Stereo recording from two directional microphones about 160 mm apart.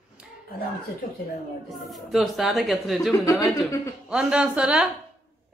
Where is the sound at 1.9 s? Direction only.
Centre (ahead or behind).